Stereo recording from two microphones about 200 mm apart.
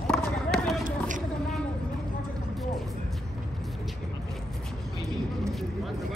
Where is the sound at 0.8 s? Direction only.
40° right (ahead or behind).